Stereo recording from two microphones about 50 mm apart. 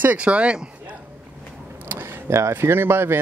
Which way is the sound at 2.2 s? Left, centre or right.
Right.